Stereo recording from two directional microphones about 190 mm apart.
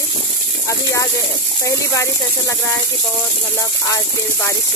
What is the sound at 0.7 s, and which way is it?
Speech, 15° left (ahead or behind).